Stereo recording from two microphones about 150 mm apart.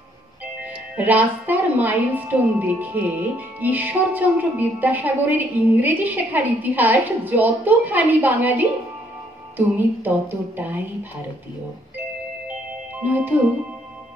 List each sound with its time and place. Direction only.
0.9 s a woman's voice: 10° right (ahead or behind)
13.0 s a woman's voice: 10° right (ahead or behind)